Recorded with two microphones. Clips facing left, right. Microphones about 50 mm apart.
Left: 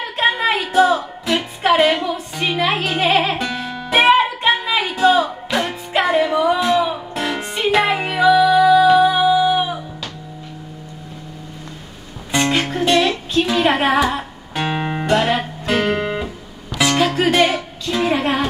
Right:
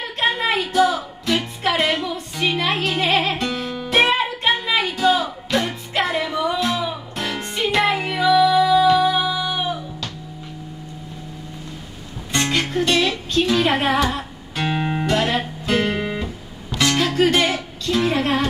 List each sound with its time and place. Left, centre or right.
0.2 s a sound: centre
0.7 s music: centre
1.8 s a sound: centre
3.1 s music: centre
12.3 s music: centre
13.3 s a woman's voice: centre
14.1 s music: centre
15.8 s guitar: centre
17.0 s music: centre